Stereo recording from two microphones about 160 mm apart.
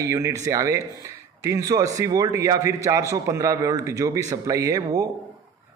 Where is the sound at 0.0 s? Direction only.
20° right (ahead or behind).